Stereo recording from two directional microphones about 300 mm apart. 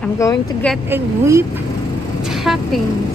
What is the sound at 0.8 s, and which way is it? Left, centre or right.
Speech, centre.